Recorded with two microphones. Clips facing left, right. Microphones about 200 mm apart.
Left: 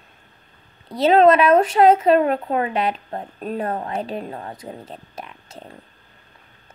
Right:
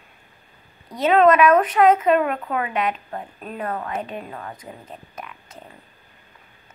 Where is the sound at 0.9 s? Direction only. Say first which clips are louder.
Left 2 dB; 30° left (ahead or behind).